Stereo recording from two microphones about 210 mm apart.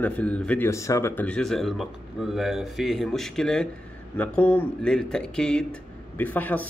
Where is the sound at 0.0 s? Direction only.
5° left (ahead or behind).